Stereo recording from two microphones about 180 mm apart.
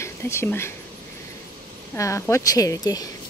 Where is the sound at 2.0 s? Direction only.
15° left (ahead or behind).